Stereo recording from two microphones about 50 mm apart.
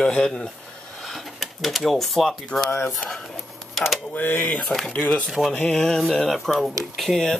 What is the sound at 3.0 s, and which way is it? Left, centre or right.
Speech, centre.